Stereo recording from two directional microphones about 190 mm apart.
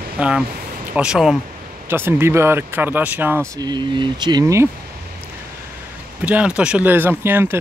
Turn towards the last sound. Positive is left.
turn(degrees=-10)  # may be behind; listen again after turning